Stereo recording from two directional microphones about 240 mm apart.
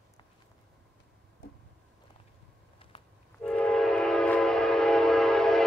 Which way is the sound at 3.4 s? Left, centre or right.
Centre.